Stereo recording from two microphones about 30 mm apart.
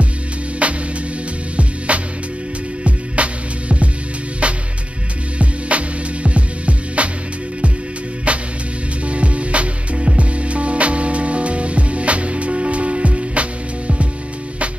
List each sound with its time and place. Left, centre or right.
0.6 s music: right
1.9 s music: right
8.3 s music: right